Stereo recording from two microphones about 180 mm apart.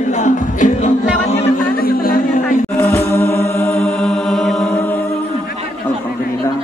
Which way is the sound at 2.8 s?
15° left (ahead or behind).